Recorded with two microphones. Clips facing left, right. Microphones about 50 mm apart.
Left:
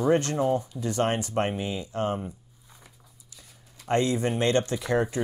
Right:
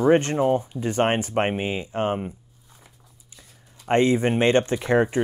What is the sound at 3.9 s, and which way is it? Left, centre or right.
Speech, right.